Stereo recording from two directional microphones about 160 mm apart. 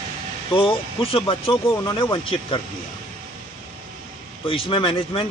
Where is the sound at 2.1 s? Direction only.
35° left (ahead or behind).